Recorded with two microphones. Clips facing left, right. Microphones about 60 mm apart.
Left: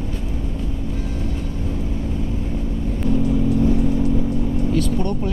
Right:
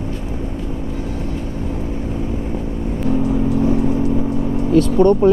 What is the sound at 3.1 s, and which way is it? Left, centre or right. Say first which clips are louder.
Vehicle: right 2 dB; right.